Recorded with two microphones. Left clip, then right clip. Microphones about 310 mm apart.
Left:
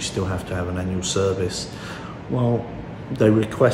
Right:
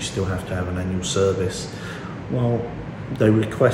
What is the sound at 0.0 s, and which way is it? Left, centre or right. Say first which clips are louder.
Speech: even; centre.